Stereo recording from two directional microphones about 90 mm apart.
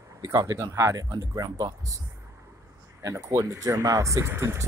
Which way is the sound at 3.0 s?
35° right (ahead or behind).